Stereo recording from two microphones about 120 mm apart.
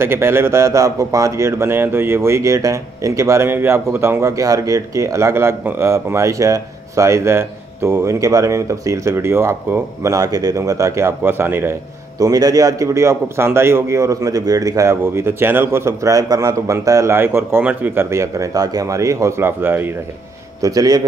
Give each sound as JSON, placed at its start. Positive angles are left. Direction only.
{"t": 0.0, "sound": "speech", "side_deg": -20}
{"t": 12.2, "sound": "speech", "side_deg": -30}
{"t": 20.6, "sound": "a man's voice", "side_deg": -30}